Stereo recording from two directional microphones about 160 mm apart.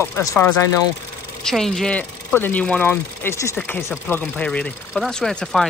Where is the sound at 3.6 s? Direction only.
Centre (ahead or behind).